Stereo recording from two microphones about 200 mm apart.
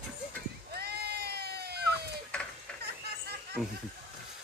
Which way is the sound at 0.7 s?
55° right (ahead or behind).